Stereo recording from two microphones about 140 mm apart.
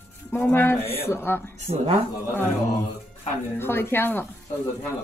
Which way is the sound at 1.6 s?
50° right (ahead or behind).